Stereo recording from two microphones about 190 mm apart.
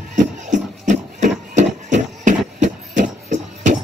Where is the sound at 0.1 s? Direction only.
40° right (ahead or behind).